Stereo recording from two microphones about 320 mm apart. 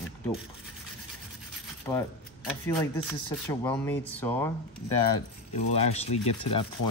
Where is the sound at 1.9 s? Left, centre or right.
Centre.